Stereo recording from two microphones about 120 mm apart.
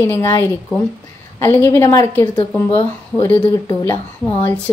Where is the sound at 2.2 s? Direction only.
40° left (ahead or behind).